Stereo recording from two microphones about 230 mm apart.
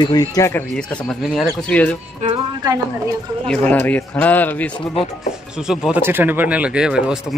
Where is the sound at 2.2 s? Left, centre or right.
Right.